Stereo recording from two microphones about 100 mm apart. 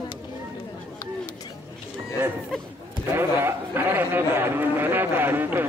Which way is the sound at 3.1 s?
25° right (ahead or behind).